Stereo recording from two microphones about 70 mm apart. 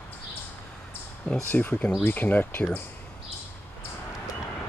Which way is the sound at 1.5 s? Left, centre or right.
Left.